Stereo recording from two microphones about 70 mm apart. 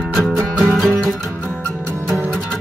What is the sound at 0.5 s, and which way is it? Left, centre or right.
Music, centre.